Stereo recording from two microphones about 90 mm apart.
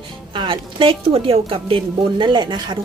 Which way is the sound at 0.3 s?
65° right (ahead or behind).